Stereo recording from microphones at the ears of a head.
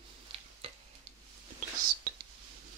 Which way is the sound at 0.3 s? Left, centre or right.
Right.